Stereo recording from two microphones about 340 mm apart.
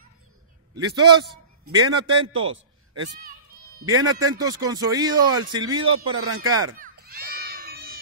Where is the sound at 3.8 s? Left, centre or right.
Right.